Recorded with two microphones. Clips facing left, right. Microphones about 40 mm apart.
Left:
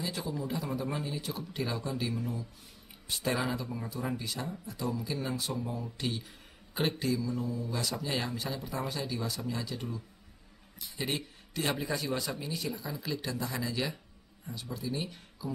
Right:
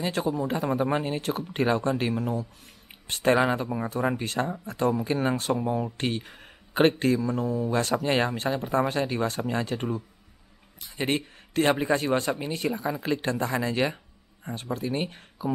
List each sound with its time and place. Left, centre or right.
0.0 s speech: right